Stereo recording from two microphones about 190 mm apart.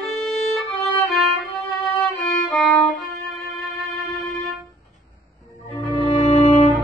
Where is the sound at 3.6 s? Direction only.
Centre (ahead or behind).